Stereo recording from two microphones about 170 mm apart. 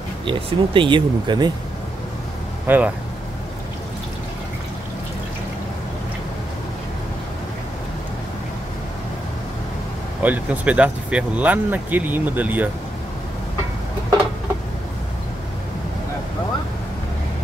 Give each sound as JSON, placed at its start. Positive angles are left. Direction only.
{"t": 0.2, "sound": "speech", "side_deg": -30}
{"t": 2.6, "sound": "speech", "side_deg": -10}
{"t": 10.2, "sound": "speech", "side_deg": -10}